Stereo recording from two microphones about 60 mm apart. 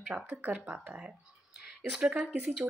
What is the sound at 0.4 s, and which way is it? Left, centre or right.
Speech, right.